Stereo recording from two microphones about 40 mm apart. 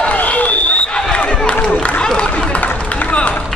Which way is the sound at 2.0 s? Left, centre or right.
Left.